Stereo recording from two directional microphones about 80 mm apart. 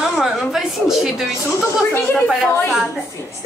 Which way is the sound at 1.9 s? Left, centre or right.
Left.